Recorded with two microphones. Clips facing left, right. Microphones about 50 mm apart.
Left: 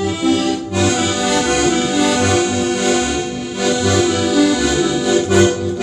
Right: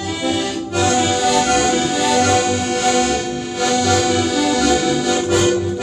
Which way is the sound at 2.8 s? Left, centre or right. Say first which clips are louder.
Even; centre.